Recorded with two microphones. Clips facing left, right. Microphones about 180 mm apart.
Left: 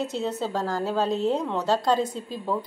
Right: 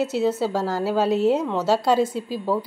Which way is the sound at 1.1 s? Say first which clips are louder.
Right 7 dB; 75° right (ahead or behind).